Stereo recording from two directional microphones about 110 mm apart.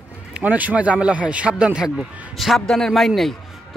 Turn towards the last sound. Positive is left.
turn(degrees=0)  # may be behind; listen again after turning